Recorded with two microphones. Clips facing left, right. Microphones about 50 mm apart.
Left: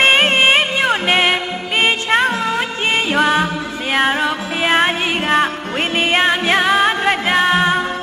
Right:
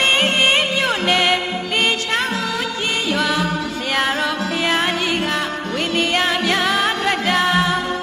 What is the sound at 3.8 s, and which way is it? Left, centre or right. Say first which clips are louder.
Music: left 4 dB; centre.